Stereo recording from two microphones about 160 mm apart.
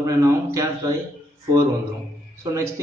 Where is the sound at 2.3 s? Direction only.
20° right (ahead or behind).